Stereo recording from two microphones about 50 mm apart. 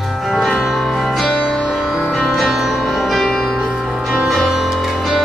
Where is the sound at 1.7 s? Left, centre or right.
Centre.